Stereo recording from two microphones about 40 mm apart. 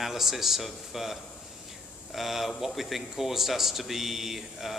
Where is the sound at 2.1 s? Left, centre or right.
Centre.